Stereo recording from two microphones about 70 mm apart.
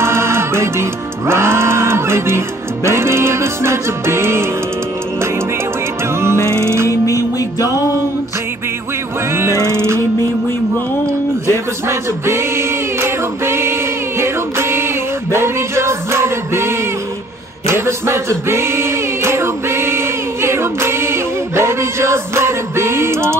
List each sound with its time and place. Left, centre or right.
0.0 s music: right
6.6 s music: right
6.9 s music: left
9.3 s music: right
11.5 s singing: right
15.3 s music: right
17.6 s a man's voice: right
18.5 s a sound: right